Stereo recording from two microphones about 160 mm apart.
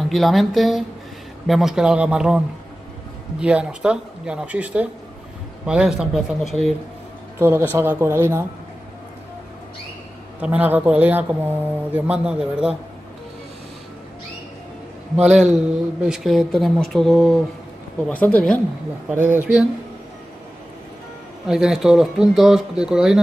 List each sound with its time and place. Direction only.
0.1 s speech: centre (ahead or behind)
7.3 s a man's voice: 15° right (ahead or behind)
10.4 s speech: 10° right (ahead or behind)
15.5 s speech: 5° right (ahead or behind)
19.0 s speech: 15° right (ahead or behind)
21.5 s speech: 5° right (ahead or behind)